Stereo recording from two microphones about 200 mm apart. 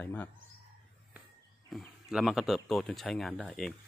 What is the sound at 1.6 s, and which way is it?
Speech, centre (ahead or behind).